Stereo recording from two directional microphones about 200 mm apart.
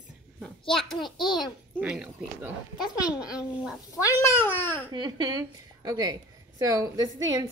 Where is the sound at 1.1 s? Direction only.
20° left (ahead or behind).